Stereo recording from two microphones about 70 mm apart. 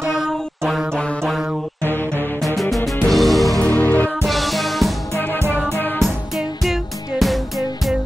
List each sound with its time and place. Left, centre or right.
0.1 s a sound: centre
0.9 s music: centre
1.9 s music: left
2.4 s music: centre
3.7 s music: left
4.3 s music: centre
5.1 s music: left
5.9 s music: centre